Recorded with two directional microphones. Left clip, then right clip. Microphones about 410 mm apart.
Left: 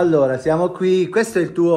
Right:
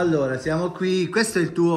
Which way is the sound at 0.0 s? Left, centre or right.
Centre.